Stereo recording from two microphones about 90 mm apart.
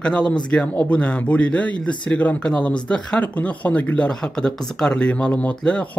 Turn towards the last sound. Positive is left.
turn(degrees=10)  # may be behind; listen again after turning